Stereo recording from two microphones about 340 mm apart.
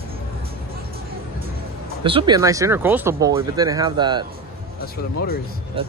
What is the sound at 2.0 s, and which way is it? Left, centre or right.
Speech, centre.